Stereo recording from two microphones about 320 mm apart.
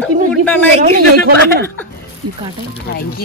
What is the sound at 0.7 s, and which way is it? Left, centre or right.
Speech, right.